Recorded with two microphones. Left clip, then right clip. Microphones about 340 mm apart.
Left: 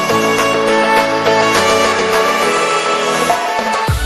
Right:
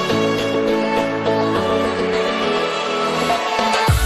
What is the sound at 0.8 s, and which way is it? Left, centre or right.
Music, left.